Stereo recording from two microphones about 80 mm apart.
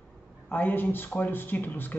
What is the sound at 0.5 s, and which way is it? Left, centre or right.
Speech, left.